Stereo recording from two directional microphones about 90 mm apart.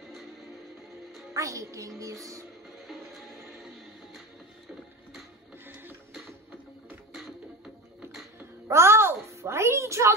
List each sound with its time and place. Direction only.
1.3 s a woman's voice: 35° right (ahead or behind)
7.2 s music: centre (ahead or behind)
8.6 s a sound: 30° right (ahead or behind)